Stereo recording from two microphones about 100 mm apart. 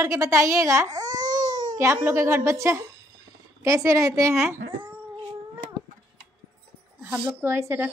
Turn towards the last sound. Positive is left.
turn(degrees=-25)  # may be behind; listen again after turning